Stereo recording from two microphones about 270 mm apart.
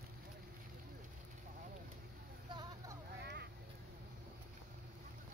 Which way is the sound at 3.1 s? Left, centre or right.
Right.